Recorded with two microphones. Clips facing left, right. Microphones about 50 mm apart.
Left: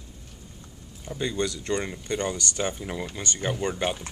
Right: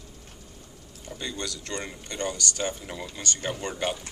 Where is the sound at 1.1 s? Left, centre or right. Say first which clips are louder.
Left 7 dB; centre.